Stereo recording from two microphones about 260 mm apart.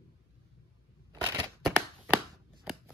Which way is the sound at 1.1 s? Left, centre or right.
Centre.